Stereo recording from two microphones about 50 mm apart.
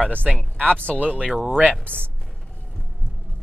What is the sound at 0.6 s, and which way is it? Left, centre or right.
Speech, left.